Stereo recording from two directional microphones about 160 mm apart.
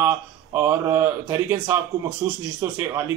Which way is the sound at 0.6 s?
15° right (ahead or behind).